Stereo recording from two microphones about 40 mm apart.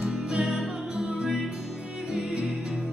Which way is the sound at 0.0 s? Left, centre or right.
Centre.